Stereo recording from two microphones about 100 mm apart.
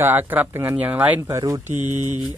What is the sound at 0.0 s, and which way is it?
Speech, 20° right (ahead or behind).